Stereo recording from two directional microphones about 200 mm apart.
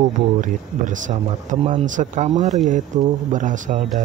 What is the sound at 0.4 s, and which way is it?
Speech, 40° right (ahead or behind).